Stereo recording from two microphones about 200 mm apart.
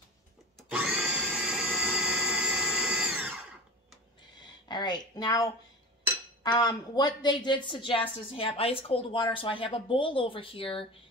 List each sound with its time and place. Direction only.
0.6 s blender: 5° right (ahead or behind)
4.4 s a sound: 20° left (ahead or behind)
6.4 s speech: 20° left (ahead or behind)